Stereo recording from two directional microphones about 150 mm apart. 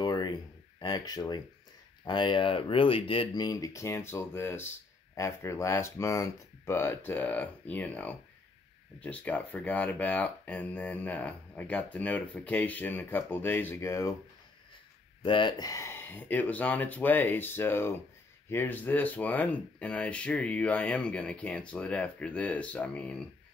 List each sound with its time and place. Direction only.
0.0 s a sound: 30° left (ahead or behind)
2.0 s speech: 30° left (ahead or behind)
15.2 s speech: 35° left (ahead or behind); by 23.2 s 10° left (ahead or behind)